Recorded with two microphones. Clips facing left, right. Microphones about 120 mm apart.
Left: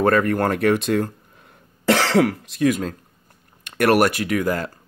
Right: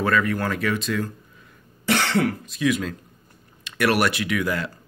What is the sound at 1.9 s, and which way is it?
Cough, 90° left.